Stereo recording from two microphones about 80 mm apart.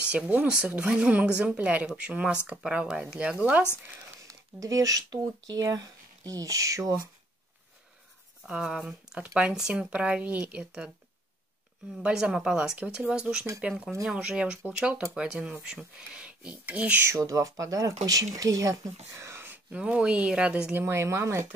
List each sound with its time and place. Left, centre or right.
0.0 s a woman's voice: centre
4.3 s speech: right
8.5 s speech: centre
12.0 s speech: centre
17.0 s speech: right
19.7 s speech: centre
20.7 s speech: right